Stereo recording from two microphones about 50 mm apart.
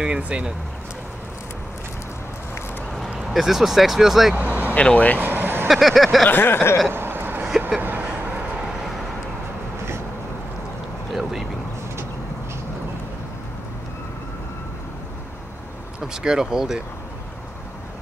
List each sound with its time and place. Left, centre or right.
0.0 s speech: right
3.2 s speech: centre
4.4 s vehicle: right
4.7 s speech: left
5.2 s vehicle: right
5.7 s vehicle: centre
6.3 s a sound: left
6.9 s a sound: right
7.8 s a sound: right
16.1 s speech: centre